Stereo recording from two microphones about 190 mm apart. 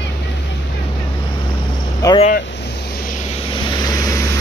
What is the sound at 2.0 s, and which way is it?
Vehicle, 20° left (ahead or behind).